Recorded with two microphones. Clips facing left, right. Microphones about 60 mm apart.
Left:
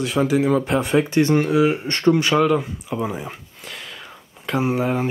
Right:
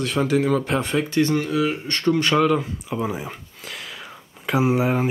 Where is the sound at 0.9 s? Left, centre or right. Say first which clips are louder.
Left 4 dB; left.